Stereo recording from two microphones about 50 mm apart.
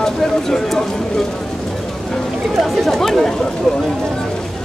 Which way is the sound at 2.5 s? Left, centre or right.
Centre.